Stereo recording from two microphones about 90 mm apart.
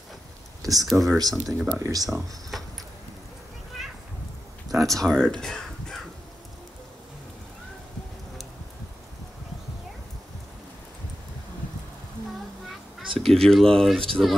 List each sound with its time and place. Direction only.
0.6 s a sound: 40° right (ahead or behind)
0.8 s speech: centre (ahead or behind)
1.7 s speech: 40° right (ahead or behind)
2.0 s speech: centre (ahead or behind)
3.8 s children playing: 5° right (ahead or behind)
4.6 s speech: centre (ahead or behind)
13.2 s speech: 5° left (ahead or behind)